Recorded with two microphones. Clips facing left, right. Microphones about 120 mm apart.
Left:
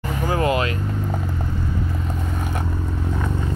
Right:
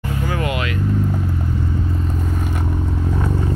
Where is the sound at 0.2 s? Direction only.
35° left (ahead or behind).